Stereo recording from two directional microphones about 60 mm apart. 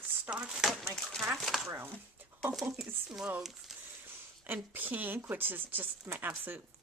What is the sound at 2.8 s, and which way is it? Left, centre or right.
Speech, centre.